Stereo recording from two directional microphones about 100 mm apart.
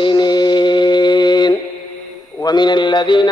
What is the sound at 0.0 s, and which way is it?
Mantra, 45° left (ahead or behind).